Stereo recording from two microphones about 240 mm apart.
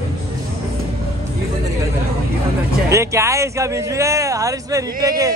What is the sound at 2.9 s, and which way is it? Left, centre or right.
Speech, centre.